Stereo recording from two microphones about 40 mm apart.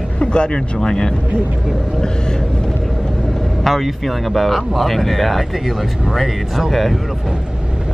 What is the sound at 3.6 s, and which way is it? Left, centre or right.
Speech, centre.